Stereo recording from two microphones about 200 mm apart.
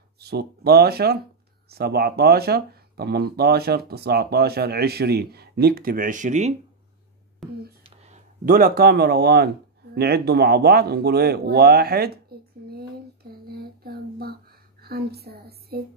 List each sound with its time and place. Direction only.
0.2 s speech: 55° right (ahead or behind); by 6.5 s 35° right (ahead or behind)
7.4 s speech: centre (ahead or behind)
7.8 s speech: 35° right (ahead or behind); by 9.5 s 55° right (ahead or behind)
9.9 s a sound: 50° right (ahead or behind)
14.8 s a woman's voice: 50° right (ahead or behind)